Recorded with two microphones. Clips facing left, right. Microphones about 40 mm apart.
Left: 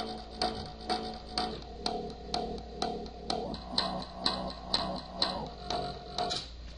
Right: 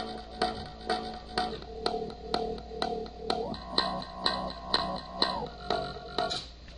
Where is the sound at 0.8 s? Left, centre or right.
Centre.